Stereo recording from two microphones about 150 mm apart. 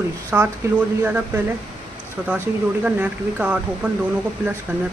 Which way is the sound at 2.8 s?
10° right (ahead or behind).